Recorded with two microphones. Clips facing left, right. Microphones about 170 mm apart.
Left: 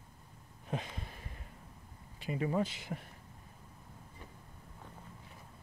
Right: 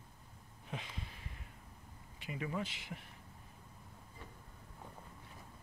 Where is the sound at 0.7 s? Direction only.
45° left (ahead or behind).